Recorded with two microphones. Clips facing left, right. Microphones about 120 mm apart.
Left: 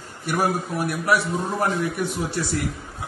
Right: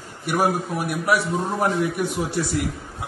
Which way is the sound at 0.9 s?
10° right (ahead or behind).